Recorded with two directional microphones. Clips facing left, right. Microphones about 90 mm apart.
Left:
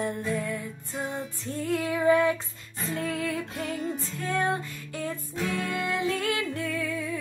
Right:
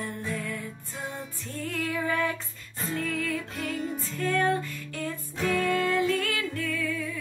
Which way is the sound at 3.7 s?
Centre (ahead or behind).